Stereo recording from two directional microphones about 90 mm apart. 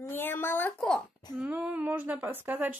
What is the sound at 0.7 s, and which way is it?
Babbling, 10° left (ahead or behind).